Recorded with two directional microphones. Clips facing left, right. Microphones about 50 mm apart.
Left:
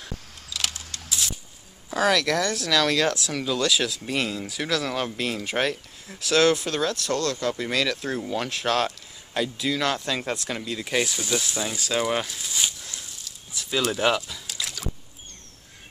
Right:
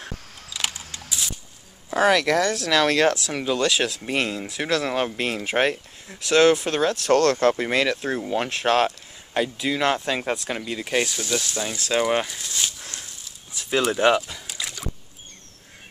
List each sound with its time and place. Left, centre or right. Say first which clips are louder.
0.5 s a sound: right 1 dB; centre
1.9 s speech: right 3 dB; centre
3.8 s speech: right 2 dB; right
6.0 s speech: right 3 dB; centre
6.6 s speech: right 3 dB; right
7.1 s speech: right 8 dB; right
7.5 s speech: right 3 dB; right
7.9 s speech: right 3 dB; centre
11.1 s speech: right 1 dB; centre
11.9 s speech: right 4 dB; centre
12.4 s a sound: even; centre
13.8 s speech: right 4 dB; centre
14.3 s a sound: even; centre